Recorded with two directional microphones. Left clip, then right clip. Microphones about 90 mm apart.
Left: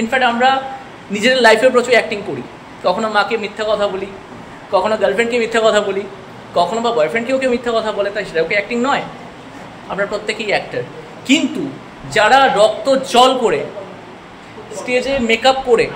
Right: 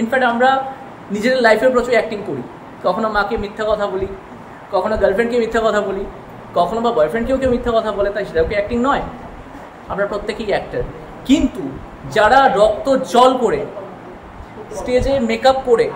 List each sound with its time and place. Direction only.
0.1 s speech: 20° right (ahead or behind)
1.1 s a man's voice: centre (ahead or behind)
10.0 s speech: 15° right (ahead or behind)
14.9 s speech: 20° right (ahead or behind)